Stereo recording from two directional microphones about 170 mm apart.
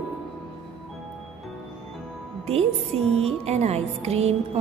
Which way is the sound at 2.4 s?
35° right (ahead or behind).